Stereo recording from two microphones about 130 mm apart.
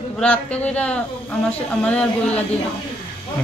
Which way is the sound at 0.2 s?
10° left (ahead or behind).